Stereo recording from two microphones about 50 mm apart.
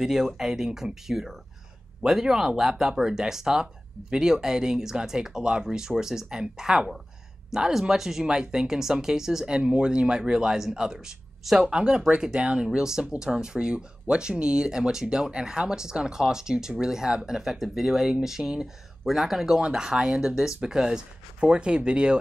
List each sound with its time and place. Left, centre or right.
0.0 s speech: centre
9.6 s speech: centre